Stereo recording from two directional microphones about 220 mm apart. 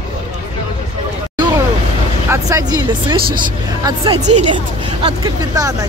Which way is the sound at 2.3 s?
15° right (ahead or behind).